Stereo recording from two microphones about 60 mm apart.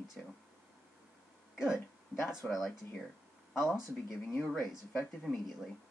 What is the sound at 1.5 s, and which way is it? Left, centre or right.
Speech, centre.